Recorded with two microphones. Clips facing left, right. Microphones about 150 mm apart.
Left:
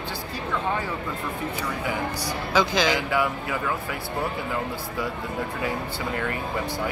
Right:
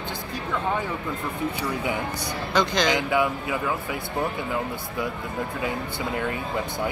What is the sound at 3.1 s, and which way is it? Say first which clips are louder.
Speech: right 2 dB; 15° right (ahead or behind).